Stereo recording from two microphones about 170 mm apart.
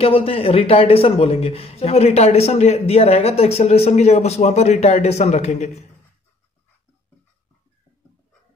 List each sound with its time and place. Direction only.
0.0 s a man's voice: 35° left (ahead or behind)